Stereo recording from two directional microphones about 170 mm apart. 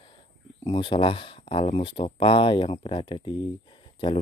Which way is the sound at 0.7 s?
30° left (ahead or behind).